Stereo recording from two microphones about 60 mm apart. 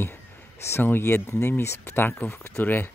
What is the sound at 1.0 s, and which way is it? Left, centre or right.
Speech, left.